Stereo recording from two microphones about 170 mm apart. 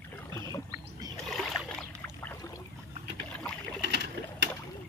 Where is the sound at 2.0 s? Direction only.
15° left (ahead or behind).